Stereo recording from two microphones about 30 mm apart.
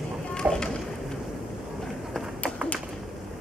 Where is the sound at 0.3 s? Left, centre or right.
Left.